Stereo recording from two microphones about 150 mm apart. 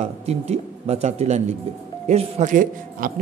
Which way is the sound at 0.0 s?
45° right (ahead or behind).